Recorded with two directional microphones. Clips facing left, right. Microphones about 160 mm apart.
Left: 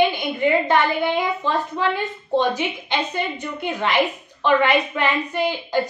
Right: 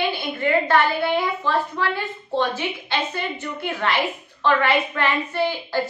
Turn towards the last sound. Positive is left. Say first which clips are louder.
# left 1 dB
turn(degrees=15)  # may be behind; listen again after turning